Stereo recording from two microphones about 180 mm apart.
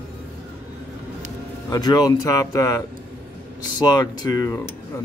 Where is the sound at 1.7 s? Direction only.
25° left (ahead or behind).